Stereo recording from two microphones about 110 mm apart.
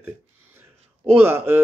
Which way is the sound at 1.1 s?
20° right (ahead or behind).